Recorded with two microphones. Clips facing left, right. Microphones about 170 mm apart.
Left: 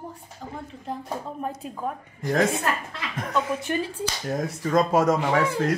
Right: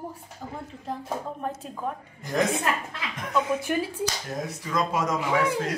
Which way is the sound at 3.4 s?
15° right (ahead or behind).